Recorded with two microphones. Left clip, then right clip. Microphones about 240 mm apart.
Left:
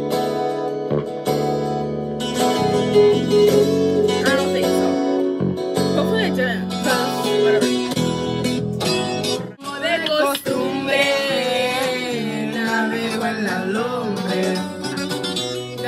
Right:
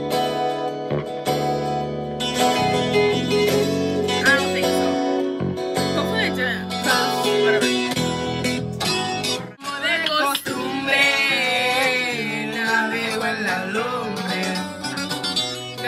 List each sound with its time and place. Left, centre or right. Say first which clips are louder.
2.3 s music: left 1 dB; right
6.9 s music: even; right
10.0 s music: left 3 dB; centre